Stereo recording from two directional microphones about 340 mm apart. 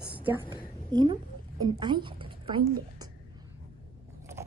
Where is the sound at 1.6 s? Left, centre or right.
Centre.